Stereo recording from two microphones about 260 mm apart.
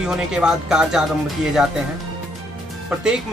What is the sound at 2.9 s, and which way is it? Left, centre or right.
Speech, centre.